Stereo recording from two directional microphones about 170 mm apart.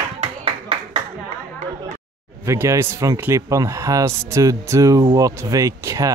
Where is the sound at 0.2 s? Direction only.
35° right (ahead or behind).